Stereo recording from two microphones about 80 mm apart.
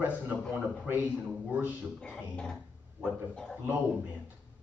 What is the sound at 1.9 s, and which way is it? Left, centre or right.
Speech, centre.